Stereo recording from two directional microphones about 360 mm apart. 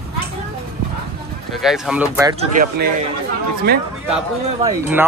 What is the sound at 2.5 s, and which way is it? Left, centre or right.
Speech, right.